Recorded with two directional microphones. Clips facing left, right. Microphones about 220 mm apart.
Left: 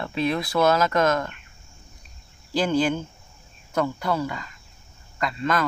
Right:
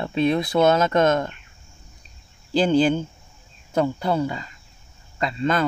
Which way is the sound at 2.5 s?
25° right (ahead or behind).